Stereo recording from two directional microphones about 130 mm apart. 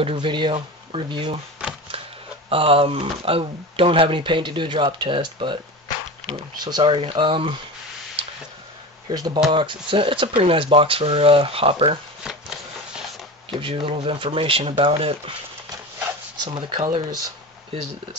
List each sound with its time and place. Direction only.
0.0 s speech: 40° right (ahead or behind)
2.5 s speech: 45° right (ahead or behind)
6.6 s speech: 35° right (ahead or behind)
9.1 s speech: 30° right (ahead or behind); by 12.0 s 45° right (ahead or behind)
12.2 s a sound: 5° right (ahead or behind)
13.5 s speech: 40° right (ahead or behind)
16.4 s speech: 40° right (ahead or behind)
16.9 s speech: 30° right (ahead or behind)